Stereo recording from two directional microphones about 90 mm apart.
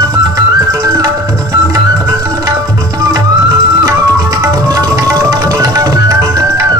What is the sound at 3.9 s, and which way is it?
Music, 40° right (ahead or behind).